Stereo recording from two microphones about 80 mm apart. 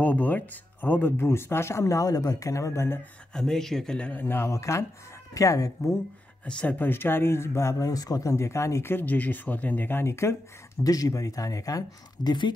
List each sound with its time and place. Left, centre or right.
0.0 s speech: left
3.3 s speech: centre
4.1 s speech: left
6.4 s speech: centre; by 7.9 s left
7.9 s speech: left
8.3 s speech: left
10.8 s speech: left